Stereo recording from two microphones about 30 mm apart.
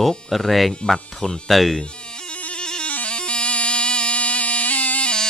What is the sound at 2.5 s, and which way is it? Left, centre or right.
Music, left.